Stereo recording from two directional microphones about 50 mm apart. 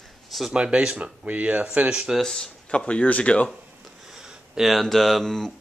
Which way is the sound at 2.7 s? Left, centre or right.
Left.